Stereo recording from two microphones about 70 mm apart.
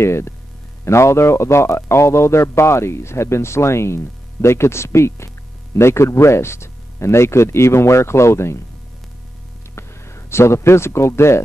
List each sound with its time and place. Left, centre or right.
0.0 s a man's voice: left
9.8 s speech: left